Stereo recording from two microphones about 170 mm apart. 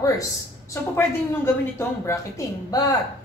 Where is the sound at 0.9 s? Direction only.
15° left (ahead or behind).